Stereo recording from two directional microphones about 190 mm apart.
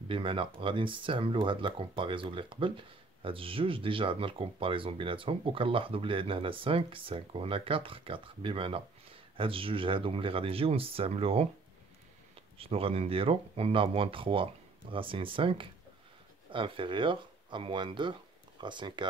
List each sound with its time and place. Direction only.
0.1 s speech: 25° right (ahead or behind)
12.5 s speech: 30° right (ahead or behind)